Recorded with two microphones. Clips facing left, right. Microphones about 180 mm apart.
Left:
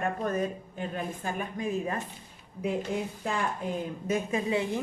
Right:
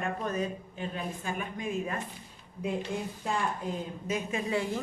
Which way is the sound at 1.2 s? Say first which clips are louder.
Left 3 dB; 40° left (ahead or behind).